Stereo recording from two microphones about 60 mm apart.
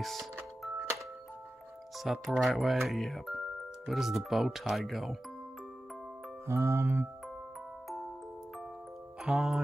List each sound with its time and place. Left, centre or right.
0.0 s music: centre
2.0 s speech: centre
6.4 s music: right
9.2 s speech: centre